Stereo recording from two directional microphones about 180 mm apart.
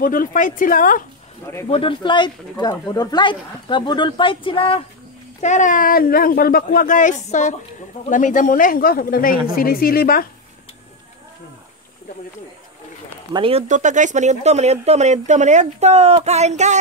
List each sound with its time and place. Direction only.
0.0 s speech: 50° left (ahead or behind)
1.4 s speech: 15° left (ahead or behind)
1.7 s speech: 30° left (ahead or behind)
5.4 s speech: 45° left (ahead or behind)
13.3 s speech: 30° right (ahead or behind)